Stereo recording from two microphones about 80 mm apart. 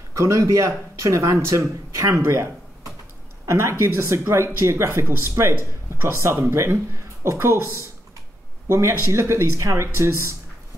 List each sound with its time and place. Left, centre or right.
0.1 s speech: right